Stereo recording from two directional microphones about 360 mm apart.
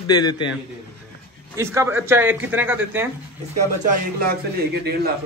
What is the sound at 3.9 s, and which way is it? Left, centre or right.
Speech, right.